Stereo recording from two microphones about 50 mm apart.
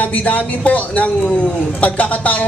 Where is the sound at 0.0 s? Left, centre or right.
Left.